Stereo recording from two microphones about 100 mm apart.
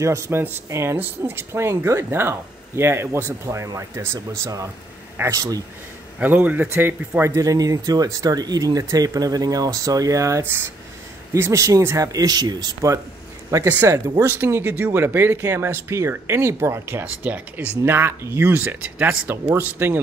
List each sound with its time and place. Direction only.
0.0 s a man's voice: 30° right (ahead or behind)